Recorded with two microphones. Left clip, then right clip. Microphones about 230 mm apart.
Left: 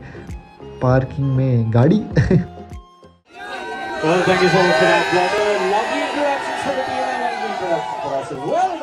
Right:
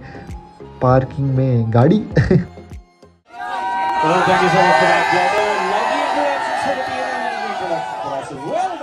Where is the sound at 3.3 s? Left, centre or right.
Centre.